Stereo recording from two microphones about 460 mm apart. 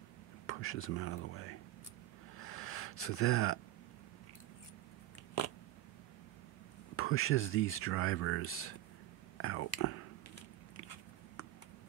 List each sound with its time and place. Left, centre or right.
0.5 s speech: left
2.3 s gasp: left
7.0 s speech: left
9.4 s whispering: left